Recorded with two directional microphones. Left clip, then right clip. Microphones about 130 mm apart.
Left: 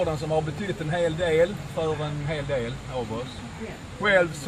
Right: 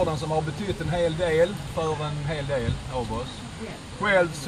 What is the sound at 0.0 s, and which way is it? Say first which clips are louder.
Speech: even; 15° left (ahead or behind).